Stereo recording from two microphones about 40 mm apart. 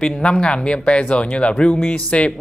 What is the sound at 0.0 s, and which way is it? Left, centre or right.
Speech, left.